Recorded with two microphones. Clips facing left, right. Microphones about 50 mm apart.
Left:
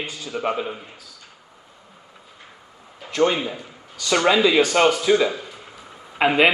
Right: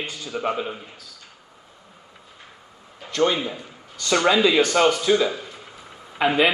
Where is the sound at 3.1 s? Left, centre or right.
Left.